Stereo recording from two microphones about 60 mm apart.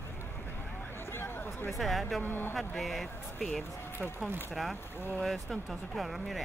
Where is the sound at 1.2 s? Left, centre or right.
Left.